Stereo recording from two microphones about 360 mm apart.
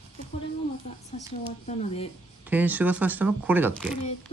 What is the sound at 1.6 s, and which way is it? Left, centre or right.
Speech, centre.